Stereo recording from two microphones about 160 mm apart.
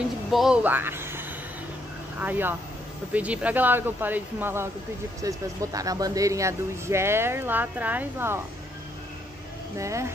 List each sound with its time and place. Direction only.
0.3 s speech: 5° right (ahead or behind)
9.8 s speech: 20° right (ahead or behind)